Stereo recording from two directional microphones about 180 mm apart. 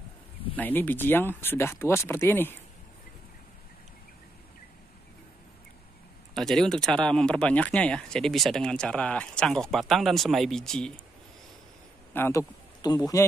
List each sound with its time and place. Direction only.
0.6 s speech: 10° left (ahead or behind)
6.3 s speech: 5° left (ahead or behind)
12.1 s a man's voice: 15° left (ahead or behind)